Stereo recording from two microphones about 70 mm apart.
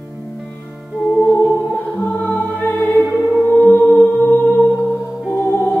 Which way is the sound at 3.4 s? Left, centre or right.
Left.